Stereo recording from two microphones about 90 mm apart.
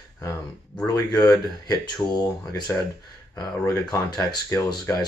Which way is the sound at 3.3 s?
40° left (ahead or behind).